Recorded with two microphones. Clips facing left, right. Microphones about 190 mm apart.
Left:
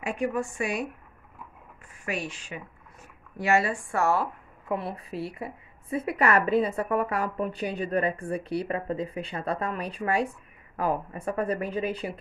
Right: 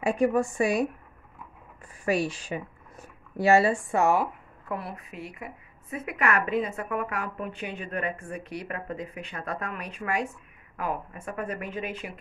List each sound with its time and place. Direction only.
0.0 s a woman's voice: 40° right (ahead or behind)
2.0 s a woman's voice: 35° right (ahead or behind); by 4.3 s 15° right (ahead or behind)
4.6 s a woman's voice: 25° left (ahead or behind)